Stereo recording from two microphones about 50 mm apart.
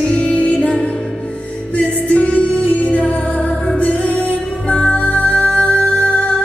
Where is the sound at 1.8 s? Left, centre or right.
Left.